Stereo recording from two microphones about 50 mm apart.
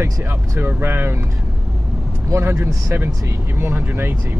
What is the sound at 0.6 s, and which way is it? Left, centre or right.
Speech, right.